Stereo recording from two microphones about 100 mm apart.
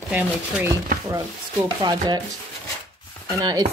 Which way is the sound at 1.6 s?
45° right (ahead or behind).